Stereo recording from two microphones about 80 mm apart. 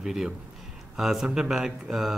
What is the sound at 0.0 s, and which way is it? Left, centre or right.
Speech, centre.